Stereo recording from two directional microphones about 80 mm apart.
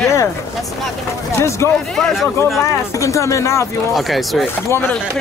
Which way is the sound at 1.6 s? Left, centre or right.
Left.